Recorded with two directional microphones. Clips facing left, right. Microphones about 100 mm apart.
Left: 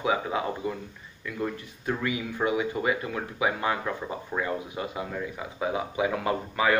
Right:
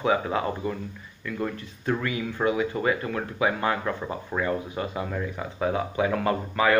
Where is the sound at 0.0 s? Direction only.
10° left (ahead or behind).